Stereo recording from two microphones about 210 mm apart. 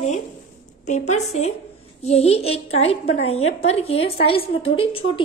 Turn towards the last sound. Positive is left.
turn(degrees=25)  # may be behind; listen again after turning